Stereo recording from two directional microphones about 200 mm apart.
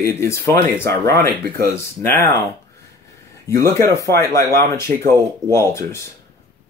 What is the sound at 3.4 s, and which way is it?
Speech, 15° left (ahead or behind).